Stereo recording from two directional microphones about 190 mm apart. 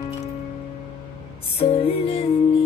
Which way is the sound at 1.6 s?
30° left (ahead or behind).